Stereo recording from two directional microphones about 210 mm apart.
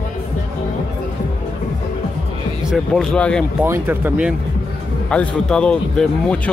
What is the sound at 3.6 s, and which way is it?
Speech, 10° right (ahead or behind).